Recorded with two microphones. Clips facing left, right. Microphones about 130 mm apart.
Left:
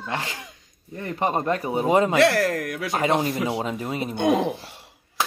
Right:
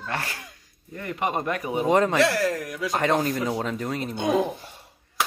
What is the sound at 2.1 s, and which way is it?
Speech, 60° left (ahead or behind).